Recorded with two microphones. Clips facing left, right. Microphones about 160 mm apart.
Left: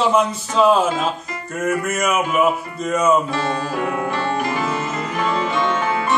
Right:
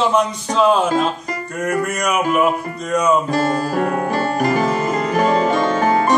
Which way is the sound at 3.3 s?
40° right (ahead or behind).